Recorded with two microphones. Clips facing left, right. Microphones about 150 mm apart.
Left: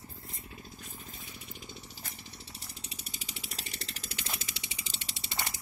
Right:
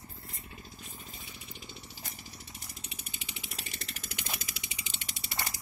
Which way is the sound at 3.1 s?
35° left (ahead or behind).